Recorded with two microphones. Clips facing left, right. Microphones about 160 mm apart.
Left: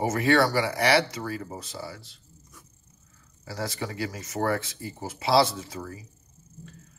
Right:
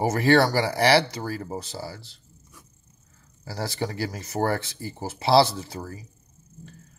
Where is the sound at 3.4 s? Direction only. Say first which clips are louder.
Right 3 dB; 30° right (ahead or behind).